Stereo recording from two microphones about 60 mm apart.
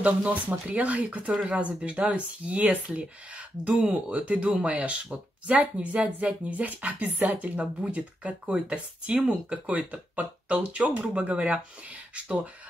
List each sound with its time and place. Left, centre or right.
0.0 s speech: right